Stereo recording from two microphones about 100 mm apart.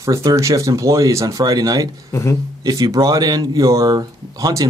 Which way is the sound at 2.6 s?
35° right (ahead or behind).